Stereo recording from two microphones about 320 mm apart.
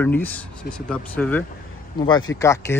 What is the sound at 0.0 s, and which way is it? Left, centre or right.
Speech, centre.